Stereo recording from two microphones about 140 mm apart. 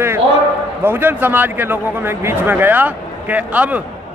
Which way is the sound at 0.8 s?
15° right (ahead or behind).